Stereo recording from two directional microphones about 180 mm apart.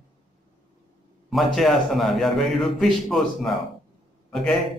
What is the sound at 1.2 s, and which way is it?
A man's voice, centre (ahead or behind).